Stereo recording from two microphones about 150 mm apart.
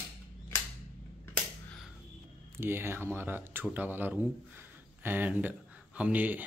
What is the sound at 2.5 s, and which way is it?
Speech, 15° right (ahead or behind).